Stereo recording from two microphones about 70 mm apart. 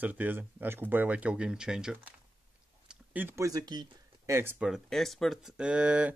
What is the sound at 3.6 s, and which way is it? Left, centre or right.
Speech, right.